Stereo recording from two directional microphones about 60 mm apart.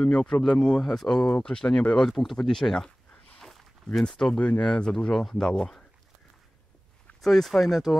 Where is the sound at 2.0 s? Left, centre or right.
Centre.